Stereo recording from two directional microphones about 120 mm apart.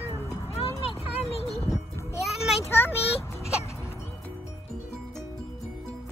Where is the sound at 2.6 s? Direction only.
20° left (ahead or behind).